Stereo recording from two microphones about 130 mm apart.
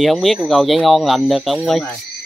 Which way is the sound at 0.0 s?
Centre (ahead or behind).